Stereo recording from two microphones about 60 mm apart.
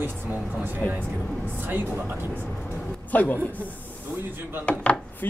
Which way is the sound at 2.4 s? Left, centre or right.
Left.